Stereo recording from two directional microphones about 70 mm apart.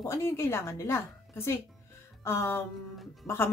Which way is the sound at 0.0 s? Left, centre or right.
Left.